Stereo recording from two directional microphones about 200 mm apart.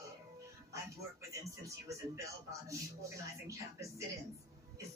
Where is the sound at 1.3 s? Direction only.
15° right (ahead or behind).